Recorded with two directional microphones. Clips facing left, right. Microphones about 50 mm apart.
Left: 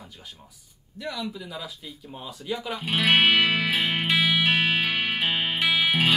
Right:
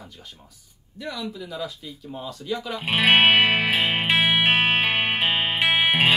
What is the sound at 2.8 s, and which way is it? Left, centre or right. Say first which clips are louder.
Music: right 3 dB; right.